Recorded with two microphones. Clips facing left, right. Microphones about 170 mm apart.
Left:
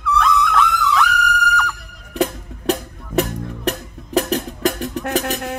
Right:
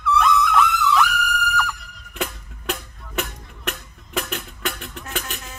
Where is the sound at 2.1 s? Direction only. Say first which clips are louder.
Left 9 dB; 35° left (ahead or behind).